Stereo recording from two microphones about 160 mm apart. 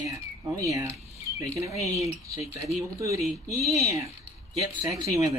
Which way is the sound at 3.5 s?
20° right (ahead or behind).